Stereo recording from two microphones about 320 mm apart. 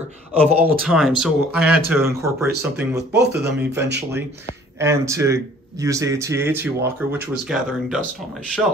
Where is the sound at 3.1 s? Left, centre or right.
Right.